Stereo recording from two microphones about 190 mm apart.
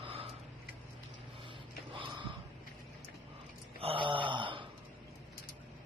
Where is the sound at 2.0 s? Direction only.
25° right (ahead or behind).